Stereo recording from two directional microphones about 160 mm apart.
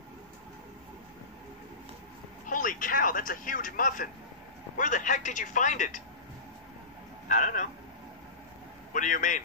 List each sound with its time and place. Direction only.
2.4 s speech: 55° left (ahead or behind)
7.2 s speech: 55° left (ahead or behind)
8.9 s speech: 55° left (ahead or behind)